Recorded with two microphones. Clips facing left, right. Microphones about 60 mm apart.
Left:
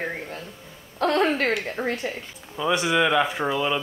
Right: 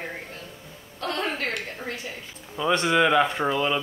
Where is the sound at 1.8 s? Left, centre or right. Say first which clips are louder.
Left 7 dB; left.